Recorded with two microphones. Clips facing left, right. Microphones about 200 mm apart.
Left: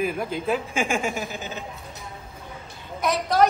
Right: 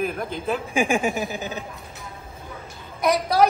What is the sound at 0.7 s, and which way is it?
Speech, 15° right (ahead or behind).